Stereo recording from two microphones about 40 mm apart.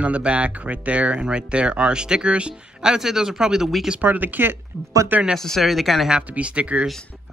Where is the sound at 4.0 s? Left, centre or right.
Right.